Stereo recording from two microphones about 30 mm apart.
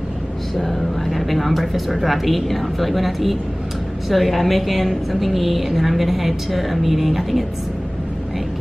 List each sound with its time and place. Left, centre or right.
0.6 s a woman's voice: centre